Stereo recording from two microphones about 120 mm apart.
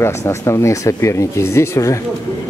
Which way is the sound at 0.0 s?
20° left (ahead or behind).